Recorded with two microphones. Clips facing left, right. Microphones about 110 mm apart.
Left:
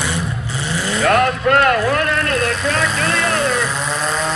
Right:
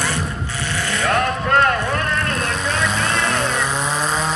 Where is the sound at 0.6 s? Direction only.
30° left (ahead or behind).